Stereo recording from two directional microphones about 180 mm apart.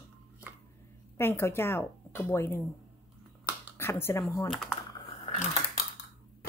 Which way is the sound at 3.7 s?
15° left (ahead or behind).